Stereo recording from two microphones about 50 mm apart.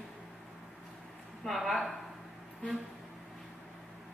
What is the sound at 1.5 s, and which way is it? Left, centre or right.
Speech, centre.